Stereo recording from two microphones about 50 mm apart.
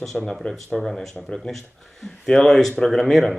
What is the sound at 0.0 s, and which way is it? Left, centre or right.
Speech, centre.